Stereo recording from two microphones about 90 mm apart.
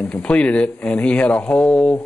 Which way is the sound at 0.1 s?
10° left (ahead or behind).